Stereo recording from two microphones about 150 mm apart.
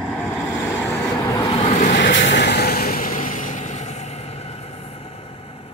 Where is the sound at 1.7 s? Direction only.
60° left (ahead or behind).